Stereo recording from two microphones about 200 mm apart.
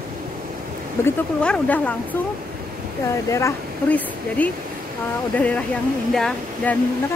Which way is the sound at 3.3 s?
10° left (ahead or behind).